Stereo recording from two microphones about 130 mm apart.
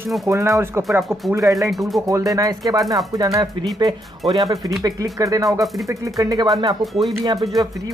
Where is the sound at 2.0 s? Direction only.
25° right (ahead or behind).